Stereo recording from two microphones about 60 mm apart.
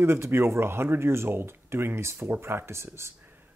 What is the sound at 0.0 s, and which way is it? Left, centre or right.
Speech, right.